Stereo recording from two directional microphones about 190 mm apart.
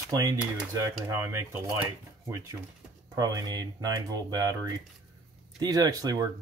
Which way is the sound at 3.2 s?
20° right (ahead or behind).